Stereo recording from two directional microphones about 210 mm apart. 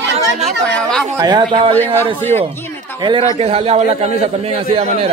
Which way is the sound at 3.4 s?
30° right (ahead or behind).